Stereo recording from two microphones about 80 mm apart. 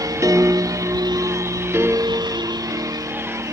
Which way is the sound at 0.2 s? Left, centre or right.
Right.